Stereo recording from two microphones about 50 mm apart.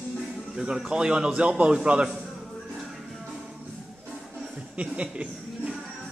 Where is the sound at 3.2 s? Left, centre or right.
Centre.